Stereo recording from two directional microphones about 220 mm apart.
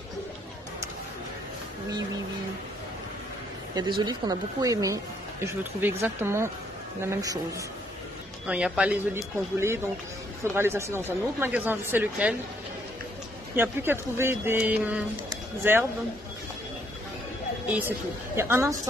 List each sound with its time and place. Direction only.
4.0 s speech: 20° right (ahead or behind)
8.5 s speech: 5° right (ahead or behind)
13.6 s speech: 10° right (ahead or behind)
15.2 s a sound: 10° right (ahead or behind)
17.7 s speech: 10° right (ahead or behind)